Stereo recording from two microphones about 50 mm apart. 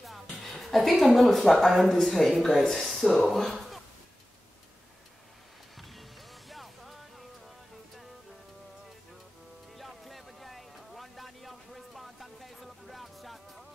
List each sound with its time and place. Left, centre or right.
0.0 s speech: centre
6.5 s music: centre
9.8 s a sound: centre